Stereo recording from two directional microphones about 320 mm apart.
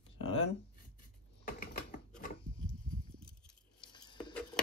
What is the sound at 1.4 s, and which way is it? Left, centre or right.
Typing, left.